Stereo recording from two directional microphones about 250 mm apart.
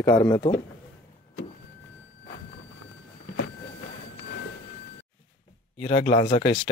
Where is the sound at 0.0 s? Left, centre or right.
Centre.